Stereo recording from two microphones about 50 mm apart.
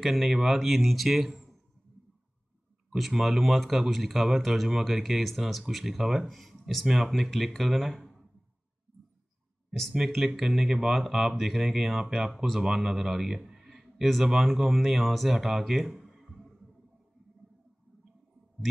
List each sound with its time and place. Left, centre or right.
0.0 s speech: centre
3.1 s speech: centre
9.9 s speech: centre